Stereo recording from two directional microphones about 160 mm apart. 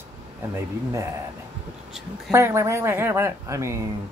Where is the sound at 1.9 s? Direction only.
Centre (ahead or behind).